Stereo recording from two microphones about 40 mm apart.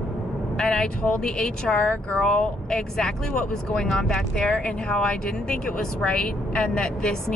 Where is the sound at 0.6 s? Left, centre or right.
Centre.